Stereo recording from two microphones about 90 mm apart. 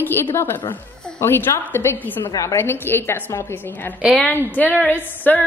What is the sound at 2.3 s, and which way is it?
A woman's voice, 35° left (ahead or behind).